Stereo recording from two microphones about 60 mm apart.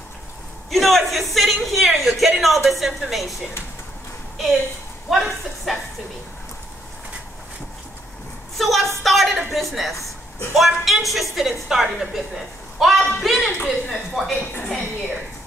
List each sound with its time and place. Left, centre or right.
0.7 s a man's voice: centre
5.1 s a man's voice: centre
8.5 s a woman's voice: centre
14.4 s a woman's voice: left